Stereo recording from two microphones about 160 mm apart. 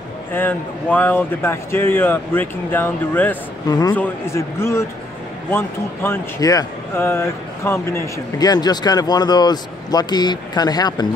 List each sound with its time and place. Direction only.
0.3 s speech: 10° left (ahead or behind)
3.6 s speech: 25° left (ahead or behind)